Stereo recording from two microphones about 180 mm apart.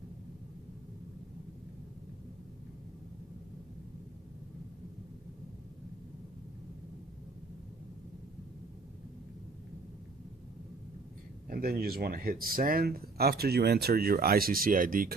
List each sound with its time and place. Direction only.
11.4 s speech: 55° right (ahead or behind)